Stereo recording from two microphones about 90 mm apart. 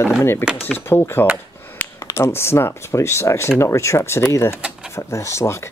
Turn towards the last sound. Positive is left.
turn(degrees=30)  # may be behind; listen again after turning